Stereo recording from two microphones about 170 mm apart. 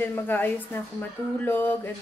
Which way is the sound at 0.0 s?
10° left (ahead or behind).